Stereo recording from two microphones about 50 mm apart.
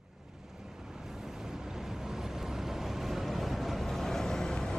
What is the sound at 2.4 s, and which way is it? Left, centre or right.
Vehicle, centre.